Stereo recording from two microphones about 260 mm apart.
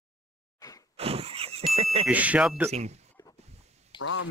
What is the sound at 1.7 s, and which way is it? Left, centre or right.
Speech, right.